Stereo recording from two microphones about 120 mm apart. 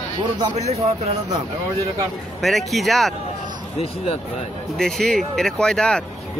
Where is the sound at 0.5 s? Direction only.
60° right (ahead or behind).